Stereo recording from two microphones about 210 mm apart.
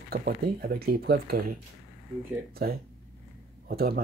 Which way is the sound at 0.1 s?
45° right (ahead or behind).